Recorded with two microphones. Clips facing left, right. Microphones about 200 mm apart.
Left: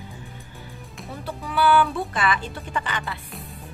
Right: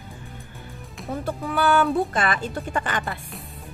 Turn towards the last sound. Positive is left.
turn(degrees=-50)  # may be behind; listen again after turning